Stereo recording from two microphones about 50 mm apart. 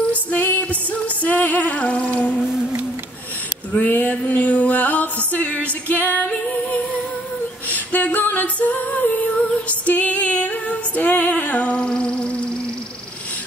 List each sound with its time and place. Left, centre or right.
0.1 s music: left
3.9 s music: left
5.9 s music: left
7.6 s a capella: left